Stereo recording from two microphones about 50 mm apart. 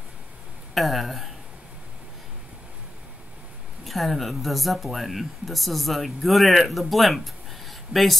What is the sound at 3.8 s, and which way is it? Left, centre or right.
Speech, centre.